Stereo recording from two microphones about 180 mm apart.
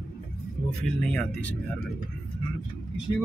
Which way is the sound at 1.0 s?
5° left (ahead or behind).